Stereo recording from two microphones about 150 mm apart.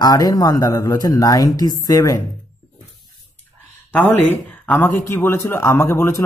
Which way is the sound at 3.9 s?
10° left (ahead or behind).